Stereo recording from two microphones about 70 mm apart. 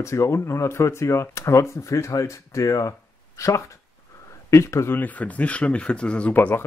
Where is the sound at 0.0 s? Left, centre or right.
Left.